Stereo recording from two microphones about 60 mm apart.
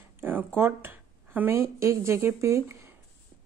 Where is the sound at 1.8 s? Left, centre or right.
Right.